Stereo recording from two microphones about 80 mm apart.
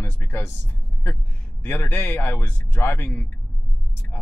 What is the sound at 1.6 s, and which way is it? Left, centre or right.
Speech, left.